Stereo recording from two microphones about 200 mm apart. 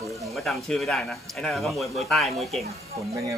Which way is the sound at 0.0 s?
Centre (ahead or behind).